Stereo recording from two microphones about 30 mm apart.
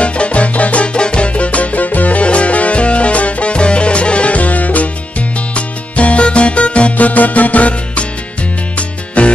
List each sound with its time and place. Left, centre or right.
0.0 s music: left
0.8 s music: left
2.1 s music: left
3.5 s music: left
5.5 s music: left
7.0 s music: left